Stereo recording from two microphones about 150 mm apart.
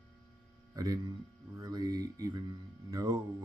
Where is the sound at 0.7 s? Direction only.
25° right (ahead or behind).